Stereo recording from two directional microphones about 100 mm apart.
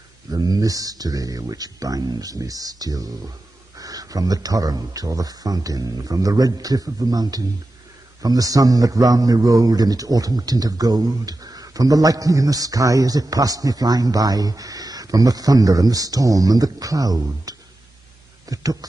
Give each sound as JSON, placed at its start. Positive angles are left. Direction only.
{"t": 0.3, "sound": "a man's voice", "side_deg": -40}